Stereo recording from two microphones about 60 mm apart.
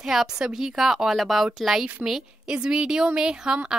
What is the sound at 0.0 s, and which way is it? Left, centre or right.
A woman's voice, centre.